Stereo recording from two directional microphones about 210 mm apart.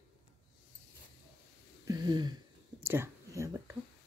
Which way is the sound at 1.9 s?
20° right (ahead or behind).